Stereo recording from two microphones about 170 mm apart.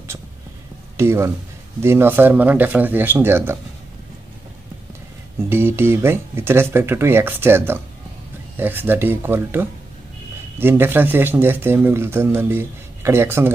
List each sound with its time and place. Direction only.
0.9 s speech: 15° right (ahead or behind)
5.5 s speech: 15° right (ahead or behind)